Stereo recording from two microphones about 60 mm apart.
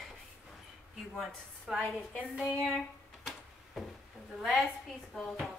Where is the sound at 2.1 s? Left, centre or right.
Right.